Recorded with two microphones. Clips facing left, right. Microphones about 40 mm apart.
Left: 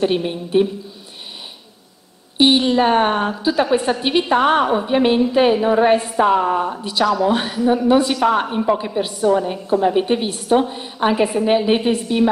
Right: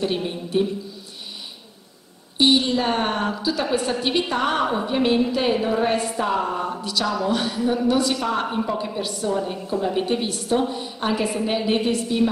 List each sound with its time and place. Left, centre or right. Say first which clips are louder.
0.0 s a woman's voice: left 6 dB; left
2.3 s a woman's voice: left 4 dB; left
4.6 s a woman's voice: left 5 dB; centre